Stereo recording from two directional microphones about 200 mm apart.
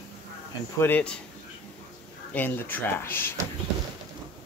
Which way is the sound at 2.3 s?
10° left (ahead or behind).